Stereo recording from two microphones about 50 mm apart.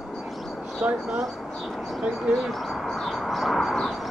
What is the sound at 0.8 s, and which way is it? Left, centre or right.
Speech, right.